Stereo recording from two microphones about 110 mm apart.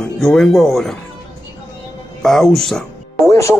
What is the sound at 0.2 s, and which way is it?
Speech, 5° left (ahead or behind).